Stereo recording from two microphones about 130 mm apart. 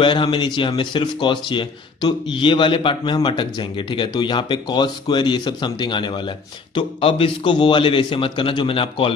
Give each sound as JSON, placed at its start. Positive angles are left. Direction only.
{"t": 0.0, "sound": "speech", "side_deg": 40}